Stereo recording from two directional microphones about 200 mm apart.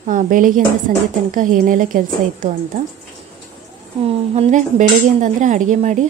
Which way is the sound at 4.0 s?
30° right (ahead or behind).